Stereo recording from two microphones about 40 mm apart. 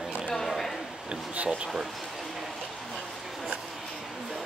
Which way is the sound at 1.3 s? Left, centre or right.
Right.